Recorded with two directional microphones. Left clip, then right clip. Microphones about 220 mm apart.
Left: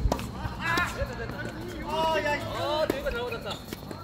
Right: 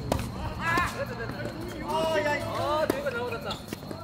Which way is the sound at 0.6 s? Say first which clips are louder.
Right 1 dB; centre (ahead or behind).